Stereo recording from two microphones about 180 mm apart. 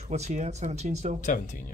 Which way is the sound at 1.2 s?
45° left (ahead or behind).